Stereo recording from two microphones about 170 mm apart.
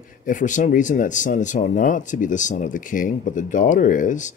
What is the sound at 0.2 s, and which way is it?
Speech, 50° left (ahead or behind).